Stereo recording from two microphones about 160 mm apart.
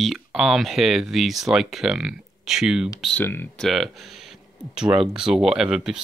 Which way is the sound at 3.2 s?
15° left (ahead or behind).